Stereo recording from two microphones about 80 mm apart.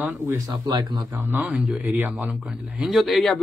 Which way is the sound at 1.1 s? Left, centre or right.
Right.